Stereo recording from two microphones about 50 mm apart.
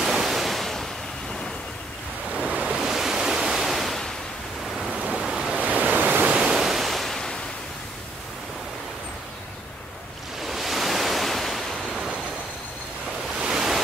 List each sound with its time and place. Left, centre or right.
0.0 s waves: centre
2.3 s waves: right
2.9 s waves: centre
4.9 s rain: right
5.2 s waves: centre
5.5 s waves: right
6.4 s waves: centre
10.4 s waves: centre
13.4 s waves: centre